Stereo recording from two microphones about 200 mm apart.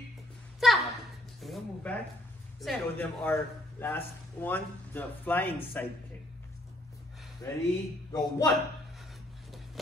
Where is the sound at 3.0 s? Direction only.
10° left (ahead or behind).